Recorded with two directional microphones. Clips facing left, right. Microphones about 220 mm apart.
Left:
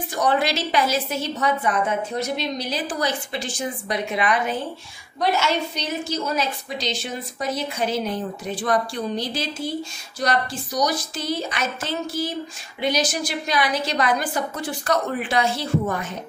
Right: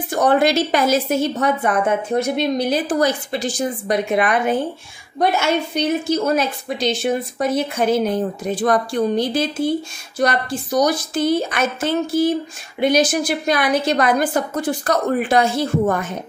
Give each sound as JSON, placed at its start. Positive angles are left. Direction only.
{"t": 0.1, "sound": "a woman's voice", "side_deg": -50}